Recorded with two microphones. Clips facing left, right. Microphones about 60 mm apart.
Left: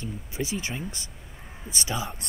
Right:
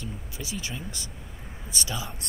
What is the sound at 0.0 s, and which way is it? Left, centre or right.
Speech, left.